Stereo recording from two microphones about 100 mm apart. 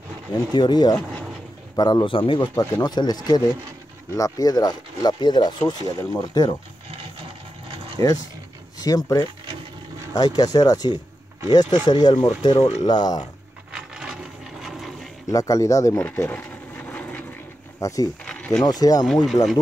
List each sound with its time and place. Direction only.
0.3 s speech: 45° left (ahead or behind)
2.5 s speech: 40° left (ahead or behind)
8.0 s speech: 40° left (ahead or behind)
13.7 s wood: 5° right (ahead or behind)
15.2 s speech: 35° left (ahead or behind)
16.1 s a sound: 20° left (ahead or behind)
17.7 s speech: 35° left (ahead or behind)
18.2 s a sound: 10° left (ahead or behind)
18.6 s speech: 40° left (ahead or behind)